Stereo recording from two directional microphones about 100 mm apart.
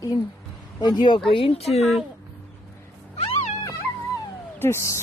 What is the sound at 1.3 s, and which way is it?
Speech, 70° left (ahead or behind).